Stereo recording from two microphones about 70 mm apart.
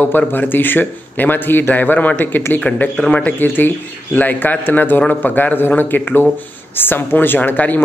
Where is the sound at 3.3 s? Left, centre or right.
Left.